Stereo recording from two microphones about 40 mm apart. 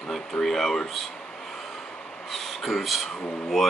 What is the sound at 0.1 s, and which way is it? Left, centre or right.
Speech, centre.